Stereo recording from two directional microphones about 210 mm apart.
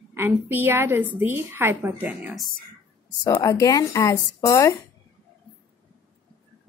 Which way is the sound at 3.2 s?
15° left (ahead or behind).